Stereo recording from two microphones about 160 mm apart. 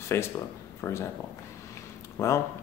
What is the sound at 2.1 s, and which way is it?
Speech, 15° left (ahead or behind).